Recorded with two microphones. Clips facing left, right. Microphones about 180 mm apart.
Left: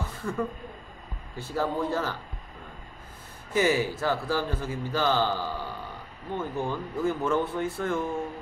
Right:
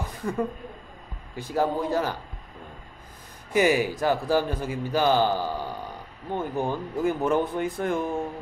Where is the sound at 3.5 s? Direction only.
15° right (ahead or behind).